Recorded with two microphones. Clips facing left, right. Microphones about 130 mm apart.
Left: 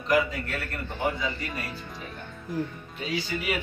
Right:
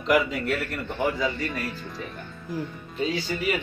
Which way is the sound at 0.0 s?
90° right.